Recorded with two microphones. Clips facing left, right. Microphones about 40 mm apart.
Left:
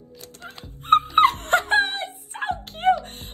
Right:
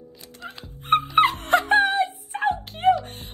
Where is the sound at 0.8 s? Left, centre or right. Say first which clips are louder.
Left 2 dB; right.